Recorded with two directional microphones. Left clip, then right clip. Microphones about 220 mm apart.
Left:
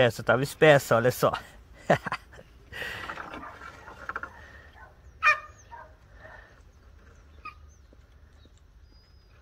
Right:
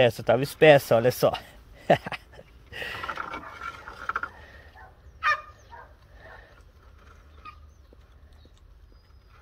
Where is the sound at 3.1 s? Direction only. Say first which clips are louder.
Right 4 dB; 45° right (ahead or behind).